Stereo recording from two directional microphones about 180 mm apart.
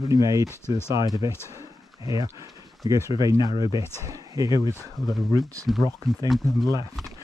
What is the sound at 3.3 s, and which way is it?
Speech, 30° left (ahead or behind).